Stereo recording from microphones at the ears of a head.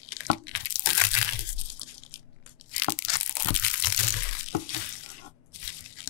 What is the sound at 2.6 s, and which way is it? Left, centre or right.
Crunch, left.